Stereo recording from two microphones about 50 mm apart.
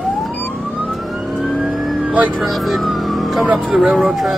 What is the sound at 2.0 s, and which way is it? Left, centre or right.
Speech, right.